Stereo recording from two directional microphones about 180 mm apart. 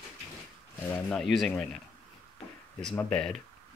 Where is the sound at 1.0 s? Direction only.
5° left (ahead or behind).